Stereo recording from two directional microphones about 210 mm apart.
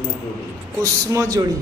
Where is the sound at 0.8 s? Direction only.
15° right (ahead or behind).